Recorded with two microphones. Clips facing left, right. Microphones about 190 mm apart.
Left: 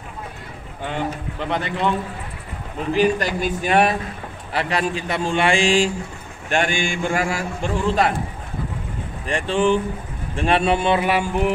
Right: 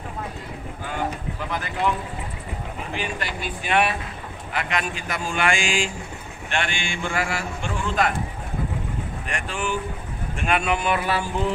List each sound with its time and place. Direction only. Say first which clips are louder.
1.5 s speech: left 3 dB; 25° left (ahead or behind)
2.9 s a man's voice: left 13 dB; 40° left (ahead or behind)
9.3 s speech: left 10 dB; 30° left (ahead or behind)